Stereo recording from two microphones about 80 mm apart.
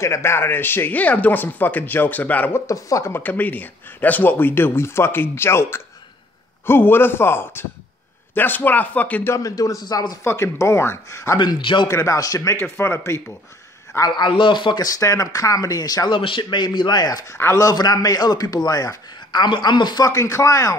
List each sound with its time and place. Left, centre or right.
0.0 s speech: left
2.6 s speech: left
3.1 s speech: left
9.3 s speech: left
10.2 s speech: left
11.3 s speech: left
11.9 s speech: left
12.5 s speech: left
13.9 s a man's voice: left
15.0 s speech: left
16.1 s a man's voice: left
17.3 s speech: left
17.6 s a man's voice: left
20.1 s speech: left